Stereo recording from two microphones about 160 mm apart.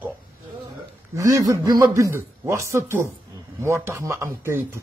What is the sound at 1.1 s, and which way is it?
A man's voice, 20° right (ahead or behind).